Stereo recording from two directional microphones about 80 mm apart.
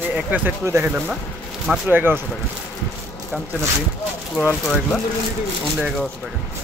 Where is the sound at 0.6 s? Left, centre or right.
Right.